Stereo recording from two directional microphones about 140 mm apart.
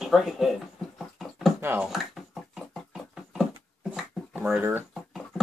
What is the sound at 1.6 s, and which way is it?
Speech, 15° right (ahead or behind).